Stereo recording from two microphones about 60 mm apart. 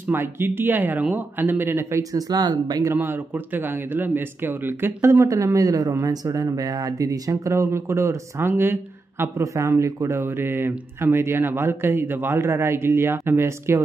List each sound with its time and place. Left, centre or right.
0.0 s speech: right
2.1 s speech: right
2.9 s speech: right
5.3 s speech: right
9.4 s speech: right